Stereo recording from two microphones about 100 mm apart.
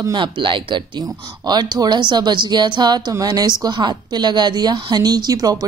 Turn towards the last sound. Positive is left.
turn(degrees=-40)  # may be behind; listen again after turning